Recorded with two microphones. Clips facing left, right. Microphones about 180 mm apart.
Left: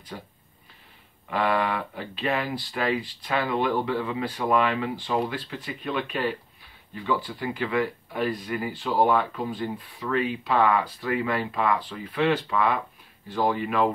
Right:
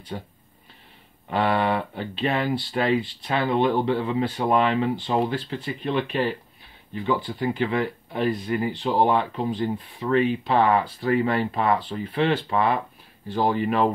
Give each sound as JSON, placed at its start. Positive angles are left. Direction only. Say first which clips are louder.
{"t": 1.3, "sound": "speech", "louder": "right 3 dB", "side_deg": -30}